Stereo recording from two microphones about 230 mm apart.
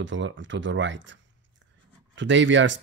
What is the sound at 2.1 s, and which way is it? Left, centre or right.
Speech, right.